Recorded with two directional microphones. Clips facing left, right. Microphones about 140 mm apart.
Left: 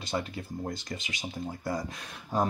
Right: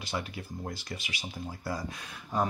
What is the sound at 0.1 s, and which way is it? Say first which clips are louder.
Speech: left 3 dB; 20° left (ahead or behind).